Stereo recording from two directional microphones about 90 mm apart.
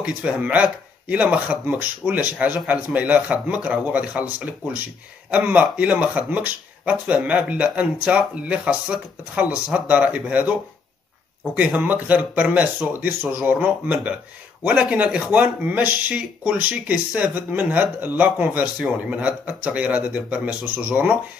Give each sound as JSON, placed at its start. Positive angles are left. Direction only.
{"t": 0.0, "sound": "speech", "side_deg": -15}
{"t": 11.5, "sound": "speech", "side_deg": -20}